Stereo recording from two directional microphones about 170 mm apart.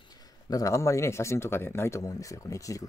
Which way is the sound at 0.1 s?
20° left (ahead or behind).